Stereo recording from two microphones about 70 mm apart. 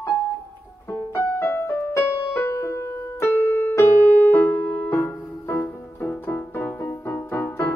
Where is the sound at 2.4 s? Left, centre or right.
Left.